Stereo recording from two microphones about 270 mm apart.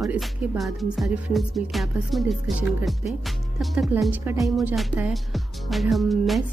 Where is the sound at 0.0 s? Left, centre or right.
Centre.